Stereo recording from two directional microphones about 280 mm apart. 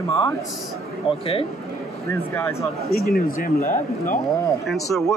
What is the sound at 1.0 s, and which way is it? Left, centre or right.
Speech, centre.